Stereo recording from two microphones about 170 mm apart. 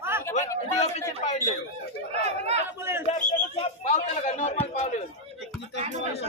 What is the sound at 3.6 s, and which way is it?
A man's voice, 40° left (ahead or behind).